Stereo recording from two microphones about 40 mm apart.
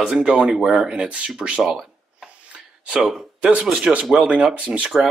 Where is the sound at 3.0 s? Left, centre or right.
Centre.